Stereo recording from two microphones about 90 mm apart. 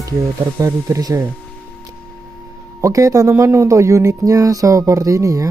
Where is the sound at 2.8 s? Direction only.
40° right (ahead or behind).